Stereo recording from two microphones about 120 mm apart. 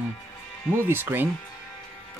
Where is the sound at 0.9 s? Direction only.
20° right (ahead or behind).